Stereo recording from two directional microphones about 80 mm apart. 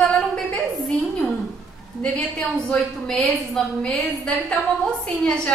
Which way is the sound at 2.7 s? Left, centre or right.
Centre.